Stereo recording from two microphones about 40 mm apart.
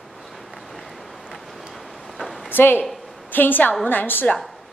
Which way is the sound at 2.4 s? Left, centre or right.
Left.